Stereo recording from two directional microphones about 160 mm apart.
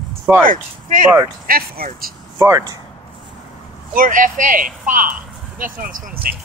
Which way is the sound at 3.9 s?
55° right (ahead or behind).